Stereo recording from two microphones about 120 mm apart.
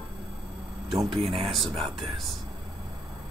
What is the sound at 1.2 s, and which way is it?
Speech, 55° right (ahead or behind).